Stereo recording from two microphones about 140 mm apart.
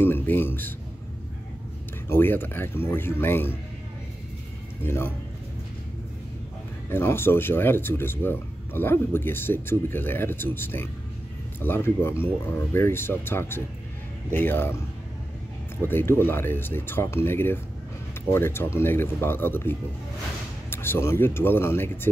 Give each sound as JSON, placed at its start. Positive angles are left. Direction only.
{"t": 0.0, "sound": "speech", "side_deg": 15}
{"t": 2.0, "sound": "speech", "side_deg": 15}
{"t": 4.8, "sound": "speech", "side_deg": 15}
{"t": 6.9, "sound": "speech", "side_deg": 15}
{"t": 15.8, "sound": "speech", "side_deg": 15}